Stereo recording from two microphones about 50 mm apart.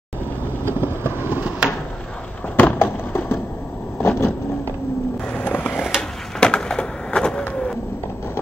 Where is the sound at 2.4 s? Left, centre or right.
Left.